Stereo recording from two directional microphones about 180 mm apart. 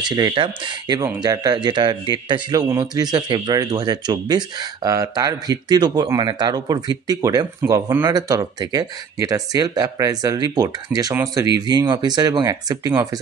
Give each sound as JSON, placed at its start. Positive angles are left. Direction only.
{"t": 0.0, "sound": "speech", "side_deg": -25}